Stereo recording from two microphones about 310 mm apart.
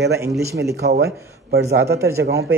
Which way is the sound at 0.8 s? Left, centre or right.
Right.